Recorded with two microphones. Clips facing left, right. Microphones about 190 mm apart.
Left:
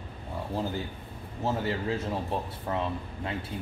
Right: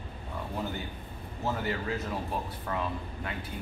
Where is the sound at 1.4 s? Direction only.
30° left (ahead or behind).